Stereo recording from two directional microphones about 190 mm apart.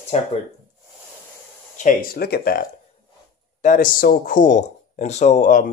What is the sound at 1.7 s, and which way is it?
Speech, 45° left (ahead or behind).